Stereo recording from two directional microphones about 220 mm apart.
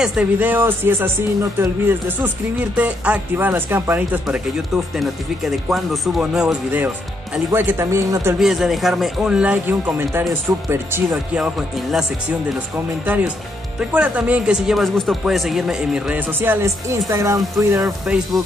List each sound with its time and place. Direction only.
0.0 s speech: 5° right (ahead or behind)
8.4 s speech: centre (ahead or behind)